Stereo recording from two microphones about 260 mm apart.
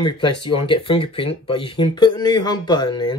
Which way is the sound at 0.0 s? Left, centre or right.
Centre.